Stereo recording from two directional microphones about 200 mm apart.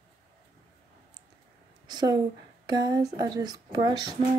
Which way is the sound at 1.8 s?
20° right (ahead or behind).